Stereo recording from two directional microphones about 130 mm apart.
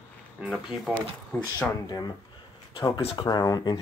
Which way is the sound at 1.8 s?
30° left (ahead or behind).